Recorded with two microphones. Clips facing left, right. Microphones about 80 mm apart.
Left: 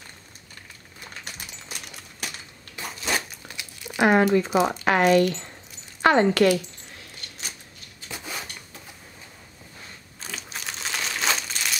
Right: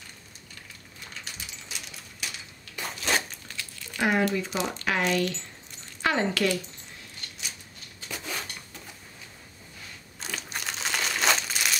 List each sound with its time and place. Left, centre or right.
1.2 s typing: left
2.8 s a sound: centre
3.4 s crumpling: centre
4.0 s speech: left
10.2 s crumpling: centre